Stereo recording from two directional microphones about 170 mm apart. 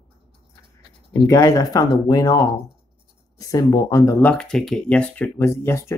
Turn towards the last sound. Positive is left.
turn(degrees=15)  # may be behind; listen again after turning